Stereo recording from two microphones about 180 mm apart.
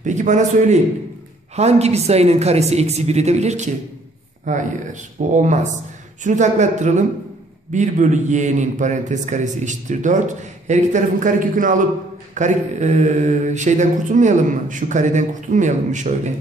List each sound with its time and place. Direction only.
0.0 s a man's voice: 40° right (ahead or behind)
1.5 s mantra: 35° right (ahead or behind)
4.5 s a man's voice: 45° right (ahead or behind)
6.2 s mantra: 40° right (ahead or behind)
7.7 s a man's voice: 40° right (ahead or behind)
12.4 s mantra: 40° right (ahead or behind)